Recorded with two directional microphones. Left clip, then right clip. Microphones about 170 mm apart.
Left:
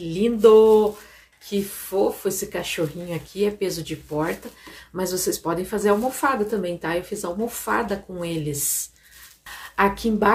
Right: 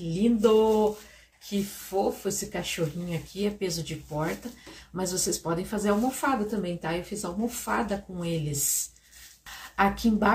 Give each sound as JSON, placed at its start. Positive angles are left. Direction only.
{"t": 0.1, "sound": "a woman's voice", "side_deg": 20}
{"t": 4.9, "sound": "a woman's voice", "side_deg": 20}
{"t": 9.8, "sound": "a woman's voice", "side_deg": 20}